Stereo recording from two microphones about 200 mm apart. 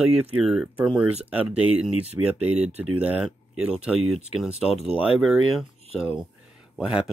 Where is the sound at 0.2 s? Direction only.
5° right (ahead or behind).